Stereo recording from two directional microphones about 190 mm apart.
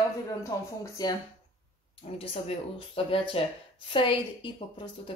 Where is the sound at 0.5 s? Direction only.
20° left (ahead or behind).